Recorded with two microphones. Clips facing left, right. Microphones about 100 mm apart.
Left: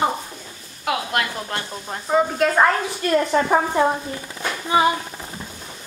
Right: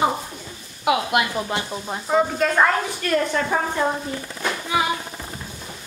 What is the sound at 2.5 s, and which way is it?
A woman's voice, 15° left (ahead or behind).